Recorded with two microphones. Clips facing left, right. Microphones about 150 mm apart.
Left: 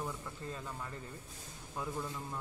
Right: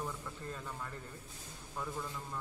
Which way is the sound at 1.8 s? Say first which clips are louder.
Left 2 dB; 15° left (ahead or behind).